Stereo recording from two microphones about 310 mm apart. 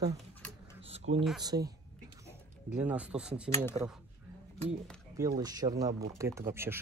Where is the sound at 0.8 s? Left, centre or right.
Centre.